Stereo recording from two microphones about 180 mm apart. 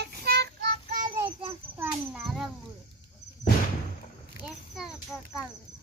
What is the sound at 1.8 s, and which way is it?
Children playing, 5° right (ahead or behind).